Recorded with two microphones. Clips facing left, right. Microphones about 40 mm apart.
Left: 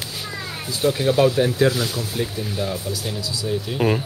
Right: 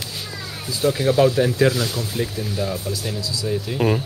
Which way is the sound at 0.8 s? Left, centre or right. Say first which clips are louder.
Even; left.